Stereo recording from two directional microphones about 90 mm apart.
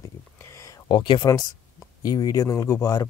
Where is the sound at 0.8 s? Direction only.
65° left (ahead or behind).